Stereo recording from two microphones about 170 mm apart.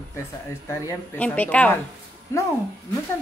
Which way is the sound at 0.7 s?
10° left (ahead or behind).